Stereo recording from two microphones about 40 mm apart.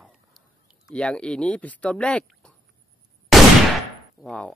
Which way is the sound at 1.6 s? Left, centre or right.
Left.